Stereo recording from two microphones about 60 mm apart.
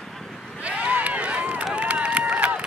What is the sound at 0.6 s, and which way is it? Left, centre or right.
Run, right.